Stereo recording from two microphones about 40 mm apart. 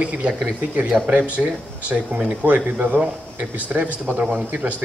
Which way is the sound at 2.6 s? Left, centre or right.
Right.